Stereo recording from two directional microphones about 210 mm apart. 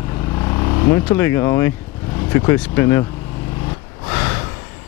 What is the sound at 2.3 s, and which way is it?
Speech, 10° left (ahead or behind).